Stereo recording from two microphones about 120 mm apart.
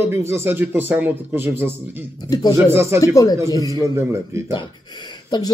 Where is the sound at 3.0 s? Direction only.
25° left (ahead or behind).